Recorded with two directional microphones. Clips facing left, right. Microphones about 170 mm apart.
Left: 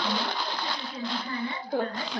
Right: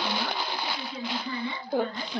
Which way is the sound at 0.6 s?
10° right (ahead or behind).